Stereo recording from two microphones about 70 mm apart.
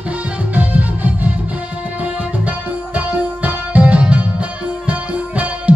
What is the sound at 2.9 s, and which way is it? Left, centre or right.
Music, centre.